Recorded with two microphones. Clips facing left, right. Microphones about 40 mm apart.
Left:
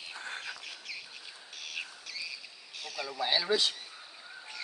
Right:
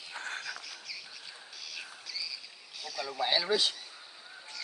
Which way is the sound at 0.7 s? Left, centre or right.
Left.